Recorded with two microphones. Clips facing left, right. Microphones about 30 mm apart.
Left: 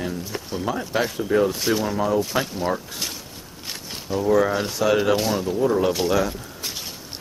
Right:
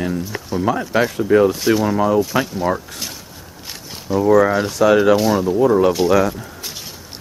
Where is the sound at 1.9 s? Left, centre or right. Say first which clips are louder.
Right 6 dB; centre.